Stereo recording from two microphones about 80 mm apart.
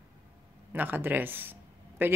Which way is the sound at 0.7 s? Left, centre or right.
Right.